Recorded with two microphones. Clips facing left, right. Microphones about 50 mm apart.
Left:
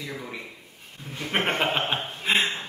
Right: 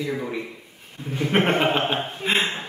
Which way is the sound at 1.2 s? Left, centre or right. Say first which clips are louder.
Right 5 dB; centre.